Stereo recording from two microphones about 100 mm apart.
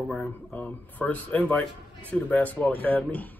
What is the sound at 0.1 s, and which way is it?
Speech, 5° left (ahead or behind).